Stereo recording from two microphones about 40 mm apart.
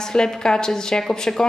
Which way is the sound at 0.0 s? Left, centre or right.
Centre.